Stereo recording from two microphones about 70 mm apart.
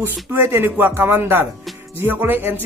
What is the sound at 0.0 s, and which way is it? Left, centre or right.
Speech, right.